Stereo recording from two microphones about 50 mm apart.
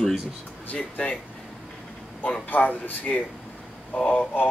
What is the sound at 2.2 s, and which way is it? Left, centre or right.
Speech, left.